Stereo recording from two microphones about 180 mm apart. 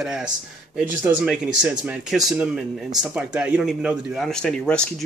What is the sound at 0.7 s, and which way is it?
Speech, 10° right (ahead or behind).